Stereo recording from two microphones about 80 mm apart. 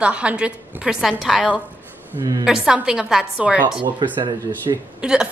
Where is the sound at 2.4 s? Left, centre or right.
Centre.